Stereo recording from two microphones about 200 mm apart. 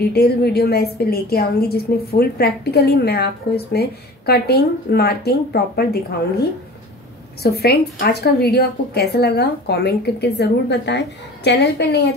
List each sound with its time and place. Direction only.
0.0 s a woman's voice: 50° left (ahead or behind)
7.4 s a woman's voice: 55° left (ahead or behind)